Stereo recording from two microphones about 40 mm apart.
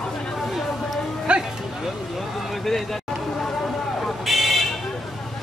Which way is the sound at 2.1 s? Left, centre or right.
Centre.